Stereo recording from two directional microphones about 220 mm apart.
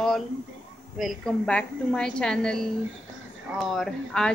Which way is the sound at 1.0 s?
Centre (ahead or behind).